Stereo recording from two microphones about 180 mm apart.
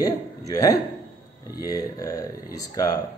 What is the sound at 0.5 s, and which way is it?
A man's voice, 20° left (ahead or behind).